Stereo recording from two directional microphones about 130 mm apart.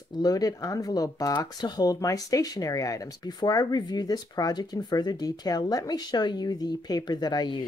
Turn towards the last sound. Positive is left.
turn(degrees=35)  # may be behind; listen again after turning